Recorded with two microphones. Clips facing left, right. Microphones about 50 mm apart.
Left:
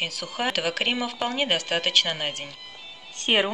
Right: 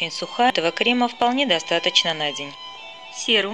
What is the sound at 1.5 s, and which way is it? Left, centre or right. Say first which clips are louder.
Speech: right 3 dB; right.